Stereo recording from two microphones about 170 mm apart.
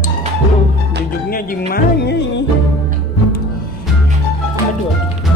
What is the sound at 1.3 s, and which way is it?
Music, 60° left (ahead or behind).